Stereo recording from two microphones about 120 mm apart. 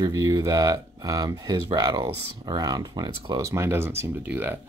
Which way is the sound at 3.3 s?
25° right (ahead or behind).